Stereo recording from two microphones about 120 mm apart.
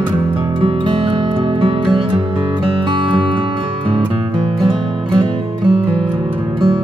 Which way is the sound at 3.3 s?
45° right (ahead or behind).